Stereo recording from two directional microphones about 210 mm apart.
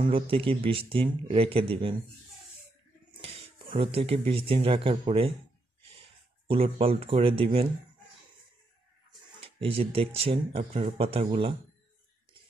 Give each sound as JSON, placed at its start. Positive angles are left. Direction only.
{"t": 0.0, "sound": "speech", "side_deg": -25}
{"t": 3.2, "sound": "a sound", "side_deg": -25}
{"t": 4.3, "sound": "speech", "side_deg": -25}
{"t": 9.6, "sound": "speech", "side_deg": -25}